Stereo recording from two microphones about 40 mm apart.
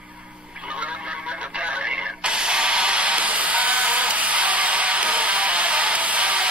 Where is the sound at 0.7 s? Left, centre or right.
Right.